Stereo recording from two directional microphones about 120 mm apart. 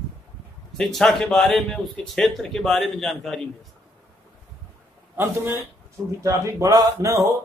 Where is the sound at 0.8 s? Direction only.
5° left (ahead or behind).